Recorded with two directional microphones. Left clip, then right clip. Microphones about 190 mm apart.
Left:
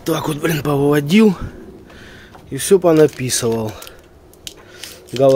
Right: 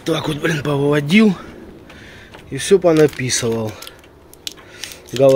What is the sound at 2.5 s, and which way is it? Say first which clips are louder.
Speech: left 1 dB; 15° left (ahead or behind).